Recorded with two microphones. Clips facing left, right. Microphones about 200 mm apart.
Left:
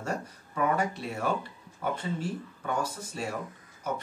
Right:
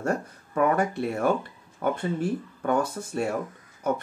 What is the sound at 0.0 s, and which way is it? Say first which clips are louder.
Speech: right 6 dB; 55° right (ahead or behind).